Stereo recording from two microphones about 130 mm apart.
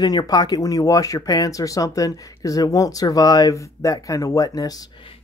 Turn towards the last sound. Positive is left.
turn(degrees=30)  # may be behind; listen again after turning